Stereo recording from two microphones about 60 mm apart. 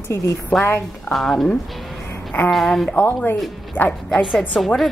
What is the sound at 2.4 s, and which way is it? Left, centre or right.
Speech, centre.